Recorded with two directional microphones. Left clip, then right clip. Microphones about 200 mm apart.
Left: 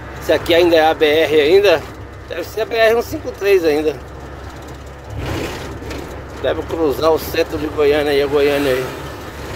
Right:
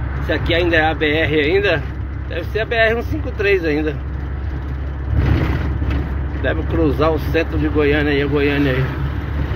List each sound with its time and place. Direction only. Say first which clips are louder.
0.3 s speech: left 5 dB; 35° left (ahead or behind)
6.4 s speech: left 2 dB; 25° left (ahead or behind)